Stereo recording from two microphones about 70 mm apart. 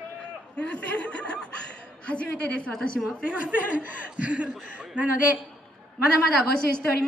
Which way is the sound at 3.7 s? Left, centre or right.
Right.